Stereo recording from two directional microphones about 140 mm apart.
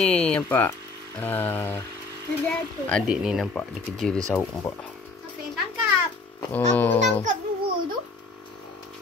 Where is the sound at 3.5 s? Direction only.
5° left (ahead or behind).